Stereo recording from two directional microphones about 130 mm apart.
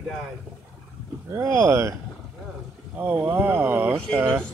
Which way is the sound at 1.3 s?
20° right (ahead or behind).